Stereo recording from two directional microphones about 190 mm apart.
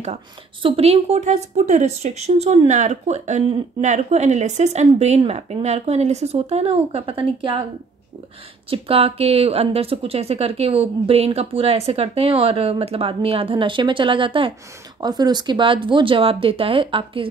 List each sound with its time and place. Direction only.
0.0 s a woman's voice: 30° right (ahead or behind)
8.6 s a woman's voice: 30° right (ahead or behind)